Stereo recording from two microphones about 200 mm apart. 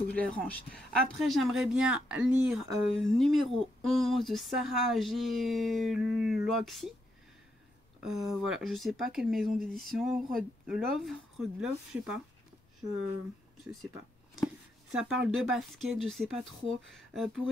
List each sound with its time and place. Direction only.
0.1 s speech: 5° left (ahead or behind)
8.0 s speech: centre (ahead or behind)
14.3 s speech: centre (ahead or behind)